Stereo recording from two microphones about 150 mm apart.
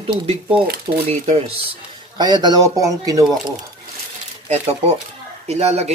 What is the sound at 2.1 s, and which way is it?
Speech, 30° right (ahead or behind).